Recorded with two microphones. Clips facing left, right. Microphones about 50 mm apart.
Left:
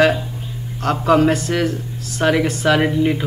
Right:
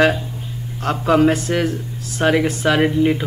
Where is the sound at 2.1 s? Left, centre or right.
Centre.